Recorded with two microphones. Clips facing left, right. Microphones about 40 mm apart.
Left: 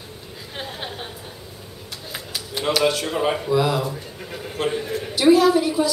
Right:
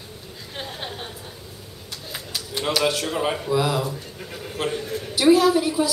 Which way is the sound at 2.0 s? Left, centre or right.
Centre.